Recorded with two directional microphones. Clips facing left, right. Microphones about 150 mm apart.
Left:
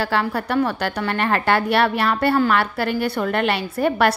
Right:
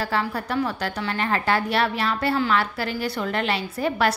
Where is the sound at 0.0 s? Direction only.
70° left (ahead or behind).